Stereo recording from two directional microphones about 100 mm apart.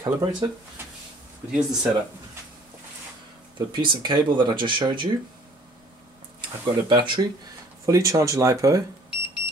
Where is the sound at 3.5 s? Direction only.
50° right (ahead or behind).